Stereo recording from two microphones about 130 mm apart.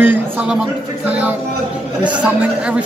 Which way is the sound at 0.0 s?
15° right (ahead or behind).